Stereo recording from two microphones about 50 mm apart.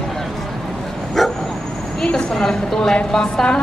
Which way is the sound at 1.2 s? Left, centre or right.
Centre.